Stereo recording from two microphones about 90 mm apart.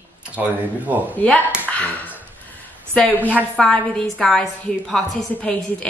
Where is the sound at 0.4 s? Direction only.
15° right (ahead or behind).